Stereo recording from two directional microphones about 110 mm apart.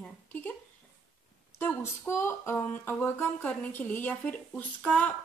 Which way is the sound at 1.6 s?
20° left (ahead or behind).